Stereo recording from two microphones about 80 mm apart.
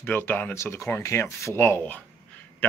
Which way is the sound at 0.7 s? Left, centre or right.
Left.